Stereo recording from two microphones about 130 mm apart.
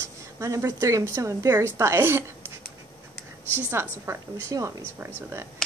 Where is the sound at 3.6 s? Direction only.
20° right (ahead or behind).